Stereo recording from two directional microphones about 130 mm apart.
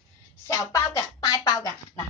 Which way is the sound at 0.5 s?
25° left (ahead or behind).